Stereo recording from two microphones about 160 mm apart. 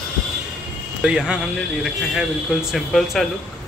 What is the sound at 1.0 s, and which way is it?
Speech, 5° right (ahead or behind).